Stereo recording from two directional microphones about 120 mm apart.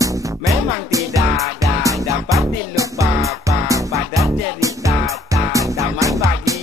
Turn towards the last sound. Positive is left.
turn(degrees=-25)  # may be behind; listen again after turning